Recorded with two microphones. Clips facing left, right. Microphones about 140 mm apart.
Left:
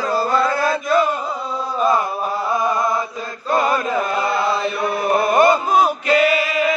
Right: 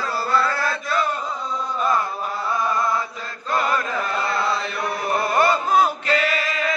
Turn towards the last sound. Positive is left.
turn(degrees=10)  # may be behind; listen again after turning